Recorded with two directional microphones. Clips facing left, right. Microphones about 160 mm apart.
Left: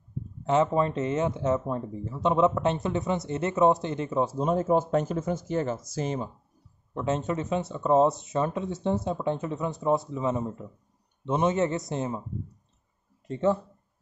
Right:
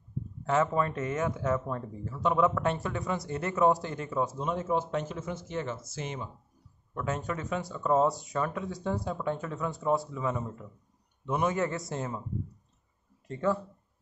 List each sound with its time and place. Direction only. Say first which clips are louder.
0.5 s speech: left 4 dB; 20° left (ahead or behind)
6.9 s speech: left 5 dB; 25° left (ahead or behind)
13.3 s speech: left 4 dB; 20° left (ahead or behind)